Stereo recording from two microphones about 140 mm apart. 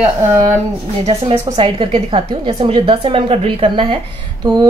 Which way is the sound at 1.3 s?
35° right (ahead or behind).